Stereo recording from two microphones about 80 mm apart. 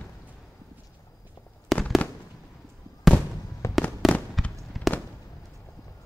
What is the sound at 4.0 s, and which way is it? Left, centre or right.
Fireworks, centre.